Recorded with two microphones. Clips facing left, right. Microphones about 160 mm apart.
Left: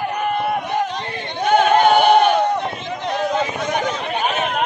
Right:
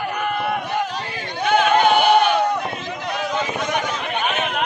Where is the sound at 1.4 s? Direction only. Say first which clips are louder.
Left 2 dB; 40° left (ahead or behind).